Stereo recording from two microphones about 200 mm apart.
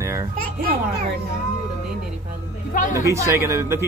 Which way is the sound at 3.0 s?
15° right (ahead or behind).